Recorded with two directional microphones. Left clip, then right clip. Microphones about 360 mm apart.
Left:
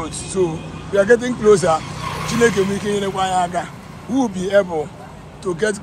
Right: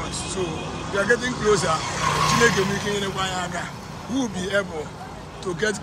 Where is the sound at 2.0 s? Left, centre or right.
Right.